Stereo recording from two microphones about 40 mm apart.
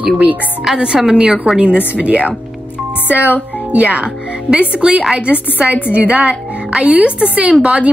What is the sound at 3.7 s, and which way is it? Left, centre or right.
A woman's voice, right.